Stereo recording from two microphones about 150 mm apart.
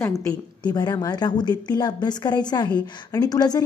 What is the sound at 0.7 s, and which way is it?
A woman's voice, 25° left (ahead or behind).